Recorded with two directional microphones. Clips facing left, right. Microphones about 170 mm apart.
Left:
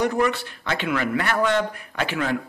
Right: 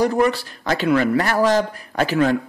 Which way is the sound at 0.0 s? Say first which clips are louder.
Right 4 dB; 35° right (ahead or behind).